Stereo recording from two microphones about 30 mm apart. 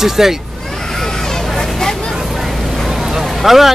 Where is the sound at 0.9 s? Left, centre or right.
Centre.